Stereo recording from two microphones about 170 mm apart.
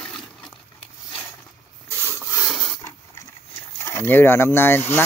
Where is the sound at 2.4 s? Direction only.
Centre (ahead or behind).